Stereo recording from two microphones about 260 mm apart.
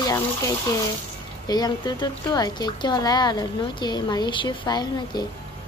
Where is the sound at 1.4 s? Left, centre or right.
Centre.